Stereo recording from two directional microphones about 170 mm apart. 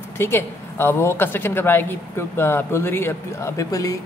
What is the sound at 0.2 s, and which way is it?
A woman's voice, 15° left (ahead or behind).